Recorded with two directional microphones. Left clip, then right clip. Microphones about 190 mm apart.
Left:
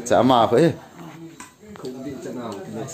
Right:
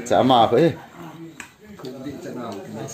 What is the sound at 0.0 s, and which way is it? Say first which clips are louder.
Speech: even; 10° left (ahead or behind).